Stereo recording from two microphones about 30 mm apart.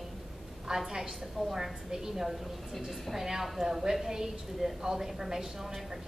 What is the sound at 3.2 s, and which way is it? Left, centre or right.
Speech, centre.